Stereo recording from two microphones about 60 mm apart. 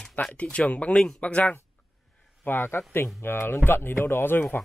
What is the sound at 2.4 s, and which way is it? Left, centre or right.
Speech, left.